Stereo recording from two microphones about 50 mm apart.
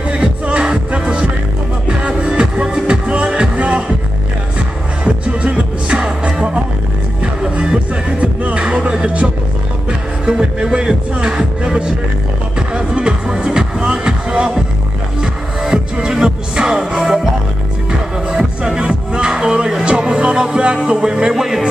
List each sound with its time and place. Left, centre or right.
0.1 s music: right
5.0 s music: right
15.6 s music: centre
18.3 s music: centre